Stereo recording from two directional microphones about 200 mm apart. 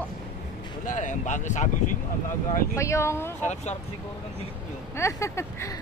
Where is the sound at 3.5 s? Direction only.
35° left (ahead or behind).